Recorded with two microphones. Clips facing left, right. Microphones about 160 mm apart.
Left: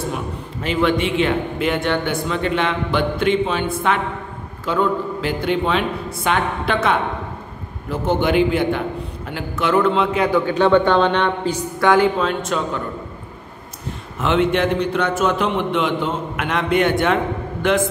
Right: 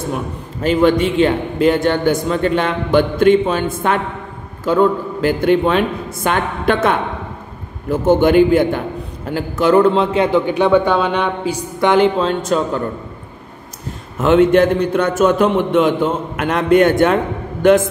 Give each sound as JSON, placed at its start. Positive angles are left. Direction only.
{"t": 0.6, "sound": "a man's voice", "side_deg": -40}
{"t": 8.1, "sound": "a man's voice", "side_deg": -45}
{"t": 11.8, "sound": "a man's voice", "side_deg": -20}
{"t": 14.2, "sound": "a man's voice", "side_deg": -45}